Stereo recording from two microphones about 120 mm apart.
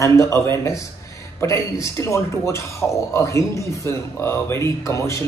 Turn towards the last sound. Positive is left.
turn(degrees=25)  # may be behind; listen again after turning